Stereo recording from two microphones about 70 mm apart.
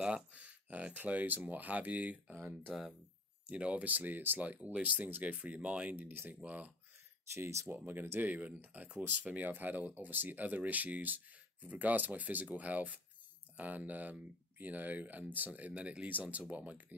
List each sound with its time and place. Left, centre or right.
0.0 s speech: centre
5.9 s speech: right
7.3 s speech: right
7.7 s speech: right
8.3 s speech: right